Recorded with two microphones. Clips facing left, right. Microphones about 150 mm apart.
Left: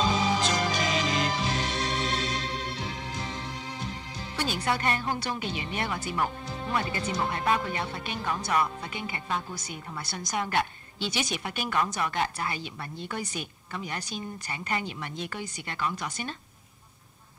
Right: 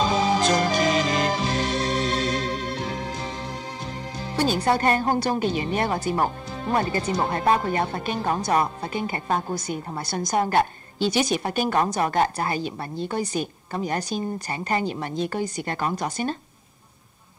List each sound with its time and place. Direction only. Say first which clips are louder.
0.4 s music: right 7 dB; 45° right (ahead or behind)
4.4 s speech: right 8 dB; 35° right (ahead or behind)